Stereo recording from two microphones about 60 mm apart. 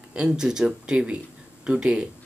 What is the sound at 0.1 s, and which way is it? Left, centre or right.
Speech, centre.